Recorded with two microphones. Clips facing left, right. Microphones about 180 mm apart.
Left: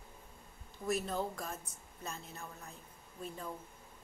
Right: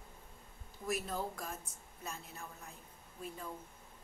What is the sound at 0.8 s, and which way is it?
A woman's voice, 5° right (ahead or behind).